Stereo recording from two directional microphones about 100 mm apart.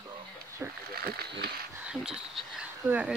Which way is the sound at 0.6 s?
20° right (ahead or behind).